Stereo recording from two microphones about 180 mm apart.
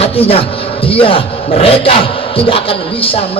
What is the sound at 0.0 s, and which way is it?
A man's voice, 35° left (ahead or behind).